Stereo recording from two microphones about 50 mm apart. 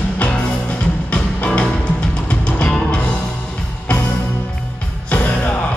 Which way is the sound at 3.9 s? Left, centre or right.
Left.